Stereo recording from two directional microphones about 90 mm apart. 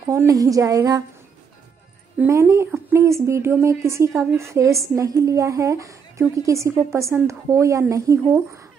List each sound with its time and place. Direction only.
0.3 s a woman's voice: 40° right (ahead or behind)
2.2 s a woman's voice: 30° right (ahead or behind)